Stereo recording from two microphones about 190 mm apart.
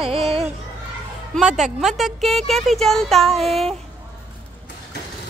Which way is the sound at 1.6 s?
Centre (ahead or behind).